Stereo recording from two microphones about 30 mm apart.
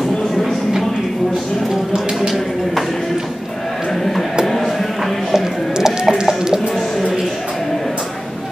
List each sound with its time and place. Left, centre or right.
0.4 s a sound: centre
5.3 s chicken: centre
6.2 s music: centre